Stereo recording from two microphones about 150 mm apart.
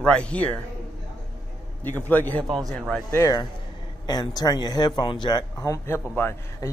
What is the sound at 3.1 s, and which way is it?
Speech, 20° left (ahead or behind).